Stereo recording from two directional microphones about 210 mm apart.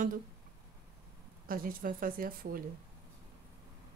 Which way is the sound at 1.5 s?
40° right (ahead or behind).